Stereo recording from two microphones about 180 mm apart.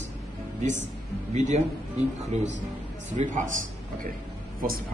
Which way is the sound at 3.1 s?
45° right (ahead or behind).